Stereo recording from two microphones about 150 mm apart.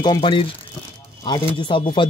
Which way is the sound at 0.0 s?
30° left (ahead or behind).